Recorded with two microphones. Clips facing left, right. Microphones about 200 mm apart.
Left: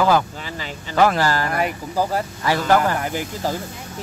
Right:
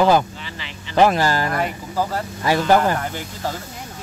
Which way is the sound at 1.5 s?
15° left (ahead or behind).